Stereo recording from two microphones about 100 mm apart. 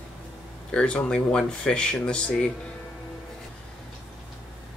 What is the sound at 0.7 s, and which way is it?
Speech, 10° left (ahead or behind).